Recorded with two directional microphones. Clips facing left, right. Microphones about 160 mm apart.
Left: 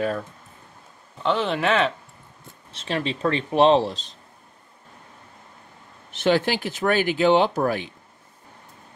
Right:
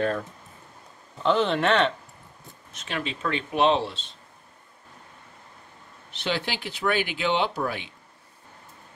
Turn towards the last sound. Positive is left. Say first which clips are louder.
# left 6 dB
turn(degrees=45)  # may be behind; listen again after turning